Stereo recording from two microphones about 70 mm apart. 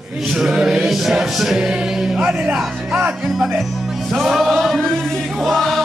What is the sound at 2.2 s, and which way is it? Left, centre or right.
Speech, centre.